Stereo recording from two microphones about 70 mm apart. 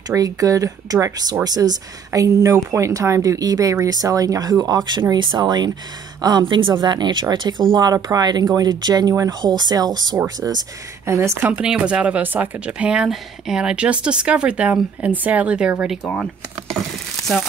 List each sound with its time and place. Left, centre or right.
0.1 s speech: right
11.1 s speech: right
11.6 s a woman's voice: centre